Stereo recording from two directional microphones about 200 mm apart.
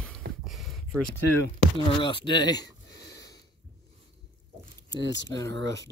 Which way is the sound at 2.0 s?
25° left (ahead or behind).